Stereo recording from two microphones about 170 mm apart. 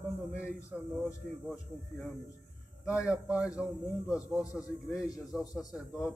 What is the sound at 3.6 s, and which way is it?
A man's voice, 5° right (ahead or behind).